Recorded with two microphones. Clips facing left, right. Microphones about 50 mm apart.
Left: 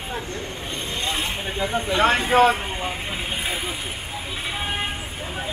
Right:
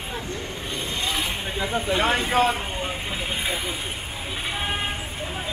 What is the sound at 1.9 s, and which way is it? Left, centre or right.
Speech, left.